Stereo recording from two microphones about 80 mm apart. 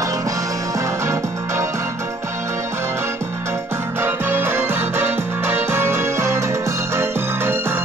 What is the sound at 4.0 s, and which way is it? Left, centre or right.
Music, right.